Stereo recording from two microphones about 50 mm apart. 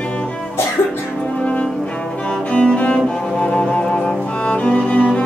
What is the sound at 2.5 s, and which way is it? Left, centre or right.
Cello, left.